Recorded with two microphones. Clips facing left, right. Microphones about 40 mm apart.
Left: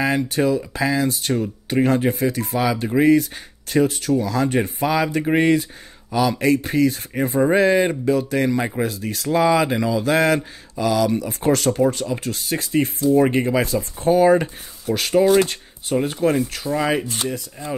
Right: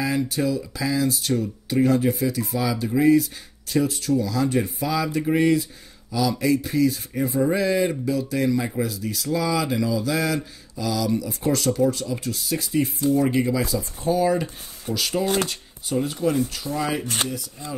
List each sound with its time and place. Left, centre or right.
0.3 s speech: left
17.0 s speech: right
17.3 s speech: left